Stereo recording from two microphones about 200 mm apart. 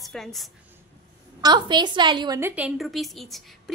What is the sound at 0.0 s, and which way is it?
Speech, centre (ahead or behind).